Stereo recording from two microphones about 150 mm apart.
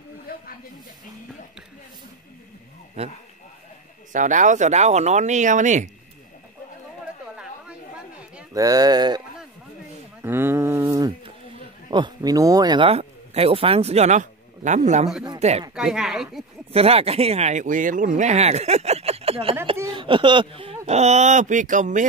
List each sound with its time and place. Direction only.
3.0 s speech: 45° right (ahead or behind)
4.1 s speech: 60° right (ahead or behind)
8.5 s speech: 25° right (ahead or behind)
10.2 s a sound: 15° right (ahead or behind)
11.9 s speech: 30° right (ahead or behind); by 15.6 s 45° right (ahead or behind)
15.7 s speech: 5° right (ahead or behind)
16.7 s speech: 40° right (ahead or behind); by 22.0 s 60° right (ahead or behind)